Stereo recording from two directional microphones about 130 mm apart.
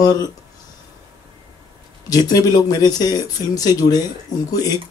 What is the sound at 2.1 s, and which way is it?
Speech, 30° left (ahead or behind).